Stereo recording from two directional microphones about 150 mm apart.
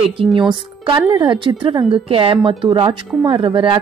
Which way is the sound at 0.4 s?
30° right (ahead or behind).